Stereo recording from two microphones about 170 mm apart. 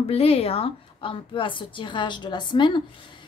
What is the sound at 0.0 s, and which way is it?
A woman's voice, 35° left (ahead or behind).